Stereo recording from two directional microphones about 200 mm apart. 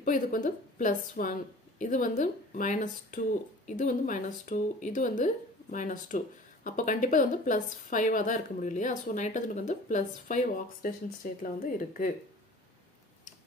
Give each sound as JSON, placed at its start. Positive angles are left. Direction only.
{"t": 0.0, "sound": "a woman's voice", "side_deg": 40}